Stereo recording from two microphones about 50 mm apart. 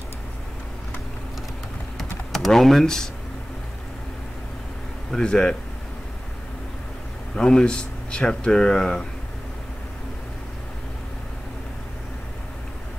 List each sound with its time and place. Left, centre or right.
2.0 s typing: centre
5.1 s speech: centre
7.3 s speech: centre